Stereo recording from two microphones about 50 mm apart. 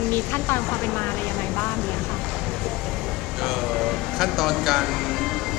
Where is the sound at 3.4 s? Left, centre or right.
Centre.